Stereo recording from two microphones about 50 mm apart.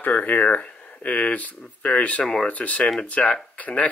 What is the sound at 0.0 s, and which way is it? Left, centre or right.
Speech, left.